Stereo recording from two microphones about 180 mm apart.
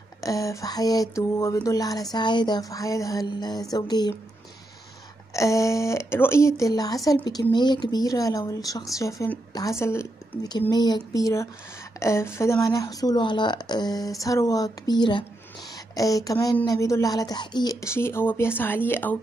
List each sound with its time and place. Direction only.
0.2 s speech: 20° left (ahead or behind)
5.3 s speech: 15° left (ahead or behind)